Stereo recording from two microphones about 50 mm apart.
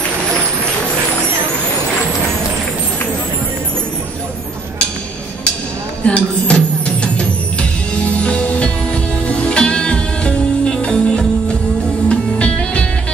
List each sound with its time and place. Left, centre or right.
6.0 s music: left